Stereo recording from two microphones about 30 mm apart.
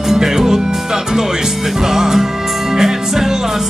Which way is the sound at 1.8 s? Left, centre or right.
Centre.